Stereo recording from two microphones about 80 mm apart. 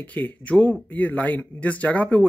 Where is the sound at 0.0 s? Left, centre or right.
Centre.